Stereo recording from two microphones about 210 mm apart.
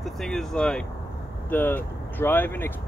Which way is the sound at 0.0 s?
Centre (ahead or behind).